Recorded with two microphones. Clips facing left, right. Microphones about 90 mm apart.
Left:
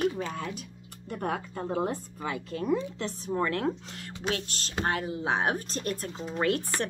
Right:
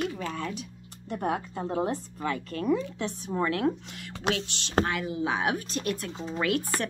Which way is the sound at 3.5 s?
40° left (ahead or behind).